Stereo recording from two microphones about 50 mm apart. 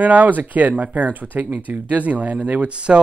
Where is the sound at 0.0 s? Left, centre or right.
Right.